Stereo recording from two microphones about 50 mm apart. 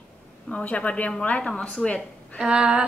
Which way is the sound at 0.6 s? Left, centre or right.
Left.